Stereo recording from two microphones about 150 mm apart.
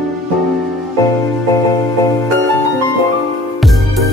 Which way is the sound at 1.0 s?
25° left (ahead or behind).